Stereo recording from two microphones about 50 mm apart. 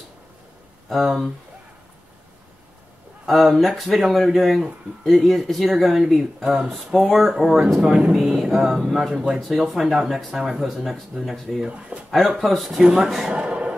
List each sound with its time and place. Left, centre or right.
0.8 s speech: centre
3.3 s speech: centre
11.6 s speech: right
12.1 s speech: centre
12.8 s speech: centre
13.3 s a sound: right